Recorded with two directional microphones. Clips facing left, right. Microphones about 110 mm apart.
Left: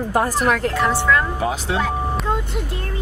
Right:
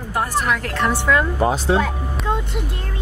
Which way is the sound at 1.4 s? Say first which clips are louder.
Right 4 dB; 35° right (ahead or behind).